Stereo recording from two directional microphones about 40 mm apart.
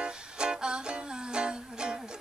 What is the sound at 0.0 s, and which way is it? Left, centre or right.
Music, right.